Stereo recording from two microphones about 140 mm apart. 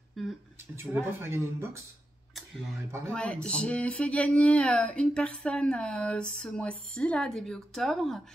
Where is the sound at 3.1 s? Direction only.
5° left (ahead or behind).